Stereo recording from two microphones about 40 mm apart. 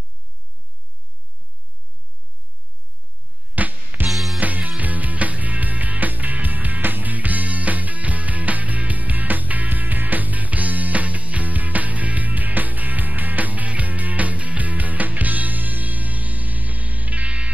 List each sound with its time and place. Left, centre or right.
3.5 s music: right
4.1 s music: centre
4.4 s music: right